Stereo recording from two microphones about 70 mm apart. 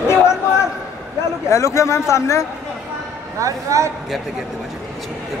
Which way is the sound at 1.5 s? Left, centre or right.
Left.